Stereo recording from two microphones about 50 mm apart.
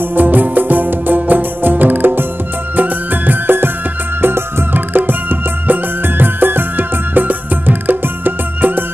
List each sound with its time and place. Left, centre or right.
0.1 s music: right